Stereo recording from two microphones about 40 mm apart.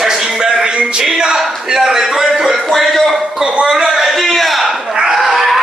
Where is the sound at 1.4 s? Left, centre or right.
Centre.